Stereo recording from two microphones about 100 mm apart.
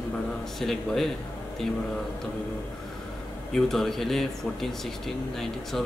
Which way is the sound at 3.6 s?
5° left (ahead or behind).